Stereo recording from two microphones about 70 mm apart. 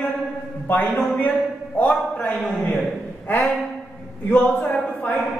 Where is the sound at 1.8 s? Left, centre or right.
Left.